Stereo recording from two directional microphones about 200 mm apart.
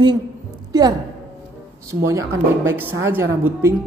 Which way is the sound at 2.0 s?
15° right (ahead or behind).